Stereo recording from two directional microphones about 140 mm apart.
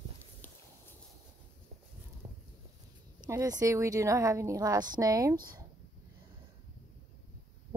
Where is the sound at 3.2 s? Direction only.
25° right (ahead or behind).